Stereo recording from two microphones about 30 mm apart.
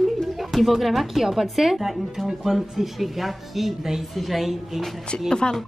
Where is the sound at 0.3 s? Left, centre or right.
Centre.